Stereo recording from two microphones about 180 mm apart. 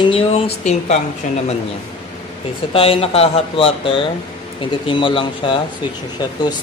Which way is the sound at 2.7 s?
30° left (ahead or behind).